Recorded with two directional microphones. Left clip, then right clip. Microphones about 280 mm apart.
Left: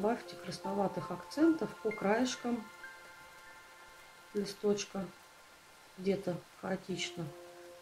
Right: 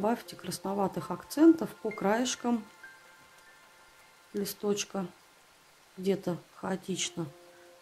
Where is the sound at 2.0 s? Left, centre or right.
Right.